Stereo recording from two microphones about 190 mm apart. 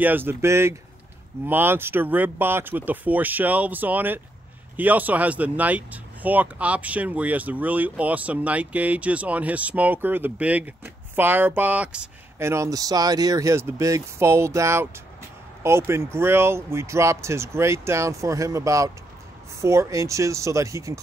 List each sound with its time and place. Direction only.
0.0 s speech: 10° right (ahead or behind)